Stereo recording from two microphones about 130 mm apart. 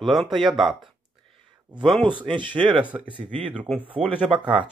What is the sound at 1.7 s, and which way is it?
Speech, 35° right (ahead or behind).